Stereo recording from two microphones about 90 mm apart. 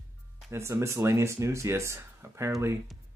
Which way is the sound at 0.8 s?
30° right (ahead or behind).